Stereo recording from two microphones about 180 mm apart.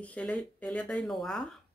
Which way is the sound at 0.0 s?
5° left (ahead or behind).